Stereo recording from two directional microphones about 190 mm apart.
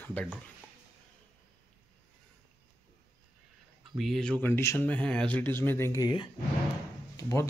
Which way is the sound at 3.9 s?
Centre (ahead or behind).